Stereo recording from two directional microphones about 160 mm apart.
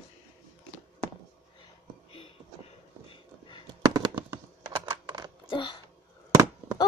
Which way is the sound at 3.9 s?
25° right (ahead or behind).